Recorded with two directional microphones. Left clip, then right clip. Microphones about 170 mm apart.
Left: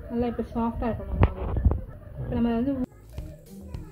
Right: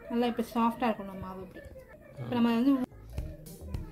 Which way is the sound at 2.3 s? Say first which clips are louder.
Even; 35° right (ahead or behind).